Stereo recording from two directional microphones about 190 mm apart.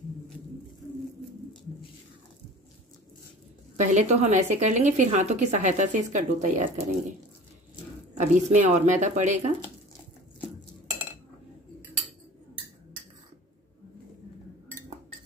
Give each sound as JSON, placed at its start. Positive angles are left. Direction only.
{"t": 3.7, "sound": "a woman's voice", "side_deg": -40}
{"t": 8.2, "sound": "a woman's voice", "side_deg": -35}